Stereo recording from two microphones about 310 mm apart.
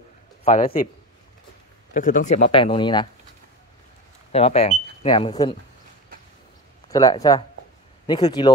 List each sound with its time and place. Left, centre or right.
0.4 s a man's voice: centre
2.0 s speech: left
4.3 s speech: centre
6.9 s speech: centre